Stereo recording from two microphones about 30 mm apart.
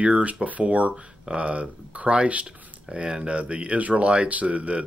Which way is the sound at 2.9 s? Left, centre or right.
Right.